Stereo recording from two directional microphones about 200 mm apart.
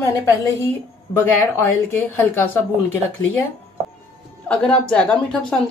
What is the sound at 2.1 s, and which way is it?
Speech, 10° left (ahead or behind).